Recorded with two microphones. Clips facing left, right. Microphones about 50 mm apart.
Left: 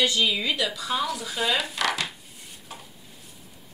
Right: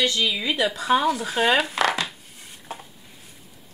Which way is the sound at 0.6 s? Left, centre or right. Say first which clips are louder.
Right 6 dB; right.